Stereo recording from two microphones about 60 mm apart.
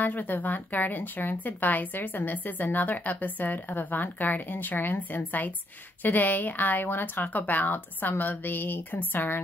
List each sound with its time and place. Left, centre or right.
0.0 s speech: left